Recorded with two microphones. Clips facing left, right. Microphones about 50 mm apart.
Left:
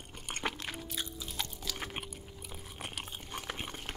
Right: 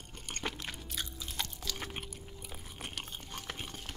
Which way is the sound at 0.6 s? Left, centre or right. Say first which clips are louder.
Left 2 dB; centre.